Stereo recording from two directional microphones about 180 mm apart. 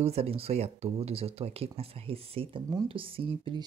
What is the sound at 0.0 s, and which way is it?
Speech, 35° right (ahead or behind).